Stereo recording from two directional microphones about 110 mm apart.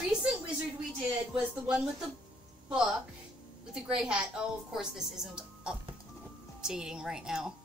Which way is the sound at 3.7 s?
10° right (ahead or behind).